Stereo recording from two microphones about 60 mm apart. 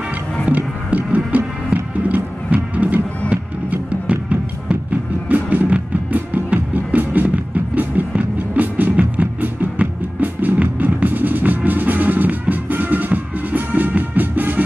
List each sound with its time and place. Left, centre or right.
0.5 s music: right